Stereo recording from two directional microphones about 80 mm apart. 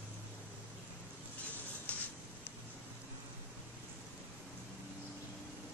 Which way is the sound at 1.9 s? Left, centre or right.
Centre.